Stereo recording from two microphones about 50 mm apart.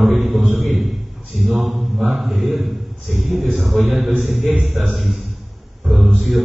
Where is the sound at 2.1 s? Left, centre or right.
Centre.